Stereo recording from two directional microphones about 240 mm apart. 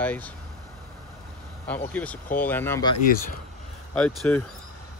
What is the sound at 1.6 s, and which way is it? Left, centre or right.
Speech, centre.